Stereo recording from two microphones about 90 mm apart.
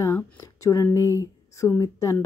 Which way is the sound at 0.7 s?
40° left (ahead or behind).